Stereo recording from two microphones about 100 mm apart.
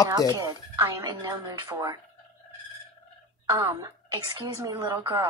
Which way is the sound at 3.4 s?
35° right (ahead or behind).